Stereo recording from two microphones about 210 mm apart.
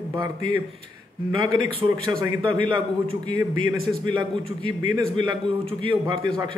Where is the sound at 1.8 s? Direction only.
15° right (ahead or behind).